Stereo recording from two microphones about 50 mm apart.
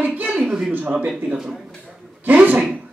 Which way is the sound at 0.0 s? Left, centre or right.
Right.